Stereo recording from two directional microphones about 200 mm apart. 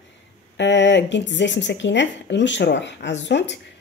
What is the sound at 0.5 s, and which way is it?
Speech, 65° left (ahead or behind).